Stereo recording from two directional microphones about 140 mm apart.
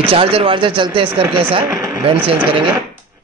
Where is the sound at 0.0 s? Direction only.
40° right (ahead or behind).